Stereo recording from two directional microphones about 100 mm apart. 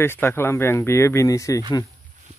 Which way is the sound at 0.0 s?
25° left (ahead or behind).